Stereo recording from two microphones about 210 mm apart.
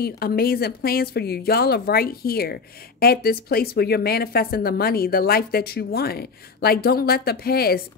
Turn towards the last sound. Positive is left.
turn(degrees=45)  # may be behind; listen again after turning